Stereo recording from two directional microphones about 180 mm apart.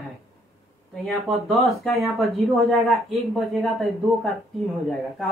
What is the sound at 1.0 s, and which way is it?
Speech, centre (ahead or behind).